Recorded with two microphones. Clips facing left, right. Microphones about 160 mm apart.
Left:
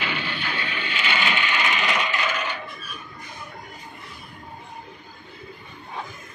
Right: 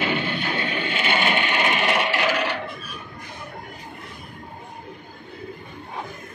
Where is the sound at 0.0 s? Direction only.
45° right (ahead or behind); by 2.6 s 70° right (ahead or behind).